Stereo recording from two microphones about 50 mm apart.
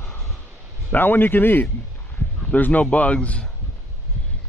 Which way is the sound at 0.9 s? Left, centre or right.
Left.